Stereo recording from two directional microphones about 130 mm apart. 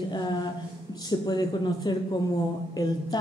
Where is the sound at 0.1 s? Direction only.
35° left (ahead or behind).